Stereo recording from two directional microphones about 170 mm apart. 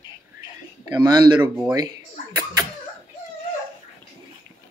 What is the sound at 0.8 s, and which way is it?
Speech, 25° right (ahead or behind).